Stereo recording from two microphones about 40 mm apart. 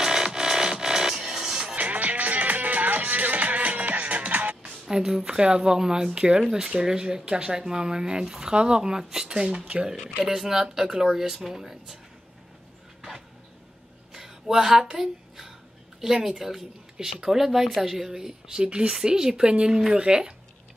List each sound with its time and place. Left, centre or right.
0.0 s music: centre
1.8 s music: right
4.8 s speech: centre
9.6 s speech: right
10.2 s speech: centre
14.1 s a sound: centre
16.0 s speech: centre